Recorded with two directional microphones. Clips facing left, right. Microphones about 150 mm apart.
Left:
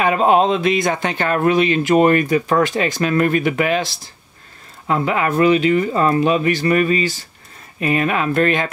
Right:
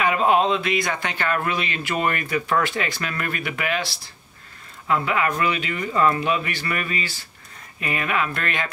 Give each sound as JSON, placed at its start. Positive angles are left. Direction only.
{"t": 0.0, "sound": "speech", "side_deg": 30}